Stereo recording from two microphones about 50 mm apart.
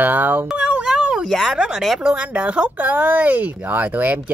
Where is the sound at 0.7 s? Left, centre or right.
Right.